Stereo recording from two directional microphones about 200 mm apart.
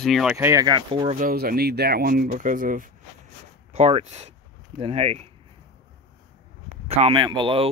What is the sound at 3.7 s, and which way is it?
Speech, 30° right (ahead or behind).